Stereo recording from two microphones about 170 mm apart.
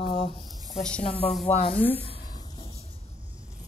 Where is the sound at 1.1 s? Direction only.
Centre (ahead or behind).